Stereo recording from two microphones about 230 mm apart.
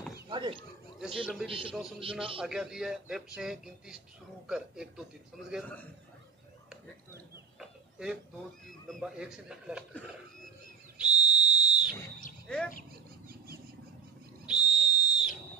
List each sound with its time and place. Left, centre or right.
0.3 s speech: right
0.9 s speech: centre
1.5 s speech: right
2.4 s a man's voice: centre
7.5 s a sound: centre
8.8 s speech: centre
11.0 s whistle: centre
12.4 s speech: centre
14.4 s whistle: centre